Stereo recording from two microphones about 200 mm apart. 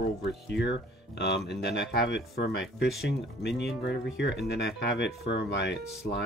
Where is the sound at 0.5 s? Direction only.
60° left (ahead or behind).